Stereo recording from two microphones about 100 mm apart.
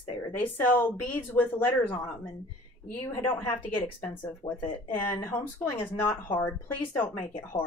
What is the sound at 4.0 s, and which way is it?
Speech, 20° left (ahead or behind).